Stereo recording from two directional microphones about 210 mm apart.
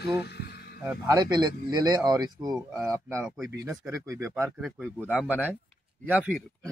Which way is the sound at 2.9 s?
5° left (ahead or behind).